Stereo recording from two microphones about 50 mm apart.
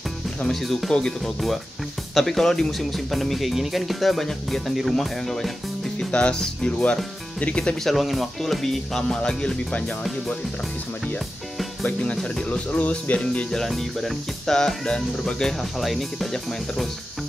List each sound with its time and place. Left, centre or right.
0.5 s speech: centre
0.9 s speech: centre
6.1 s speech: centre
7.3 s speech: left
7.8 s speech: centre
11.8 s speech: left
13.7 s speech: centre
15.8 s speech: centre